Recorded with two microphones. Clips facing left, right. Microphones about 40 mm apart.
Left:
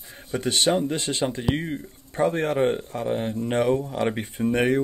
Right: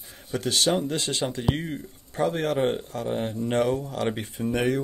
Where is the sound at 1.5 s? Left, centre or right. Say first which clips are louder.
Left 2 dB; centre.